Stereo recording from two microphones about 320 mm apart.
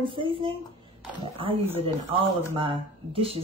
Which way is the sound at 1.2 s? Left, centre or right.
Centre.